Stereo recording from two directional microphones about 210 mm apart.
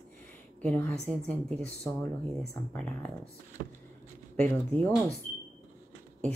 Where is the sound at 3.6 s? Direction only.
45° right (ahead or behind).